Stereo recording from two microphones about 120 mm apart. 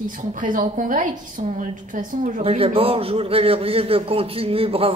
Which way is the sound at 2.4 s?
50° right (ahead or behind).